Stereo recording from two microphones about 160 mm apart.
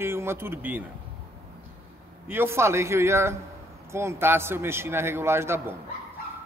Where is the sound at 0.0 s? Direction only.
15° right (ahead or behind).